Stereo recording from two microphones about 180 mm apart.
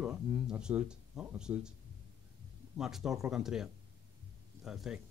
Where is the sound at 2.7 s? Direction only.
5° right (ahead or behind).